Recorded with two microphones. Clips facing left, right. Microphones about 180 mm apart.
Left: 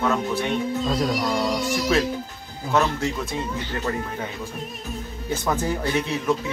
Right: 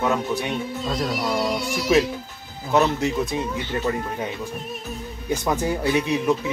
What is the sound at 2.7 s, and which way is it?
Speech, 20° right (ahead or behind).